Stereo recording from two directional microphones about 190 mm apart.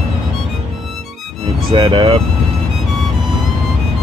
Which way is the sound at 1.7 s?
25° right (ahead or behind).